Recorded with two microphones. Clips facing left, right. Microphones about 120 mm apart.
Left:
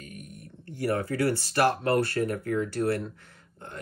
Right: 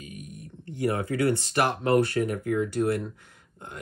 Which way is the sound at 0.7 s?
20° right (ahead or behind).